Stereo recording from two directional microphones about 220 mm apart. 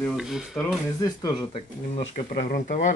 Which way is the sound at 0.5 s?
15° left (ahead or behind).